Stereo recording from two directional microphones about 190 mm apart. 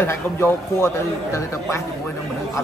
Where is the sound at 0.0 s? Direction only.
10° left (ahead or behind).